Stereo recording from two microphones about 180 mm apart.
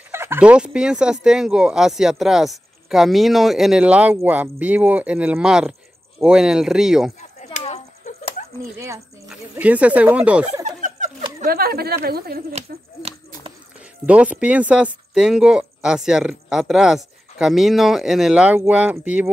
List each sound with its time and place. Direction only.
0.1 s speech: 15° right (ahead or behind)
7.5 s a sound: 40° left (ahead or behind)
8.7 s speech: 15° right (ahead or behind)
10.6 s speech: 40° right (ahead or behind); by 12.4 s 60° right (ahead or behind)
14.0 s speech: 5° right (ahead or behind)